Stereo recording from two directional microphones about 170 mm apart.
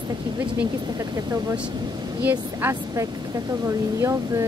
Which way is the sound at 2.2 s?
10° right (ahead or behind).